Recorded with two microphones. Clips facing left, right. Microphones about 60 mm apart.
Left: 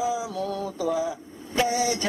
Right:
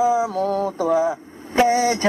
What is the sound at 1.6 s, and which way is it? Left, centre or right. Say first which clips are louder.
Vehicle: right 7 dB; right.